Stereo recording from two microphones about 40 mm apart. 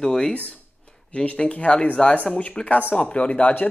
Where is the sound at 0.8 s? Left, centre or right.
Left.